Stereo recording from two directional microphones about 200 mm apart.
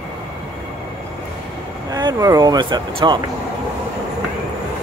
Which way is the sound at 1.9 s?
20° right (ahead or behind).